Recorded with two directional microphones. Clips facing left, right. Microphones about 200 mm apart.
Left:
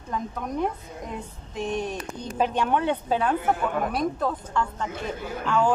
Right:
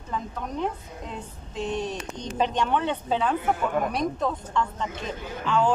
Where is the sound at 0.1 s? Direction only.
10° left (ahead or behind).